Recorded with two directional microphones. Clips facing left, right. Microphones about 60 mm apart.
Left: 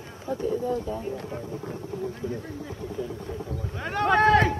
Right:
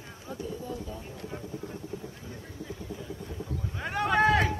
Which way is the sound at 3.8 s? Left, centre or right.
Centre.